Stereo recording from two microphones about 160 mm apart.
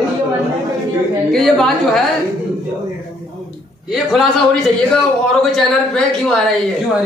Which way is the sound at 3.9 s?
5° right (ahead or behind).